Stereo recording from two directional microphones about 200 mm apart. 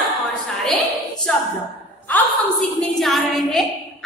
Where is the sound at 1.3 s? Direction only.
5° left (ahead or behind).